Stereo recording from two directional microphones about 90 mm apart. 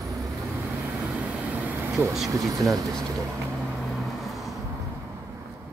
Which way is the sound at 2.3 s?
40° right (ahead or behind).